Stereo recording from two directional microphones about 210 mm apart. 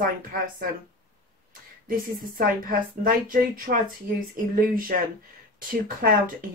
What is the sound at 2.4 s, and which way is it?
A woman's voice, 40° right (ahead or behind).